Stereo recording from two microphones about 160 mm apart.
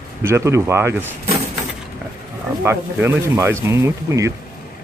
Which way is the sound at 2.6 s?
15° right (ahead or behind).